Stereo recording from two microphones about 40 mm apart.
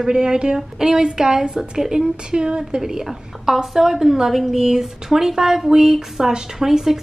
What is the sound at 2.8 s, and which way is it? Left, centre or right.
A woman's voice, centre.